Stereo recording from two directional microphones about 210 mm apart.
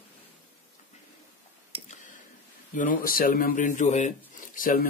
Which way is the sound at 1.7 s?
25° right (ahead or behind).